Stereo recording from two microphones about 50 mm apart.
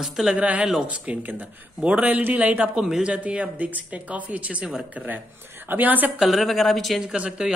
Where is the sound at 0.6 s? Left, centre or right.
Centre.